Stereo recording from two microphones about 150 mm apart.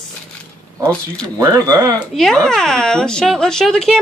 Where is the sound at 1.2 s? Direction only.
20° right (ahead or behind).